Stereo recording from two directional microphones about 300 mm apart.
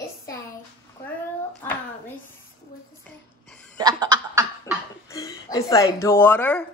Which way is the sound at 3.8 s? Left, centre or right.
Centre.